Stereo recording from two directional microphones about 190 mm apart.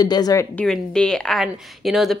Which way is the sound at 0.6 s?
5° left (ahead or behind).